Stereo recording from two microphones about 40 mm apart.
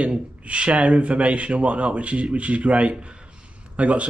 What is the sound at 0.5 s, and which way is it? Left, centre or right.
Speech, right.